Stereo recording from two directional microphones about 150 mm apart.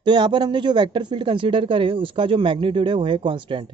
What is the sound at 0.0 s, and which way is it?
Speech, 30° right (ahead or behind).